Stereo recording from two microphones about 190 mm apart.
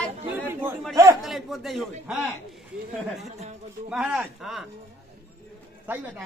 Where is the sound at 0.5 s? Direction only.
10° right (ahead or behind).